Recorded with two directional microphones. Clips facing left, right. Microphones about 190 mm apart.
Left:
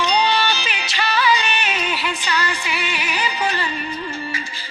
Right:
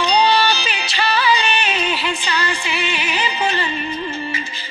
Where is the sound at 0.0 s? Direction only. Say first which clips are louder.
Right 3 dB; 30° right (ahead or behind).